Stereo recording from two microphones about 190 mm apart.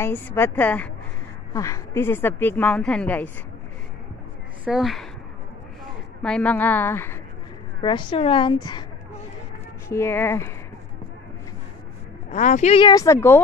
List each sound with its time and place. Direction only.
0.0 s a woman's voice: 10° left (ahead or behind)
4.6 s speech: centre (ahead or behind)
6.2 s a woman's voice: 5° left (ahead or behind)
7.8 s a woman's voice: 25° left (ahead or behind)
9.8 s a woman's voice: 15° left (ahead or behind)
12.3 s speech: 35° left (ahead or behind)
12.8 s a woman's voice: 15° left (ahead or behind)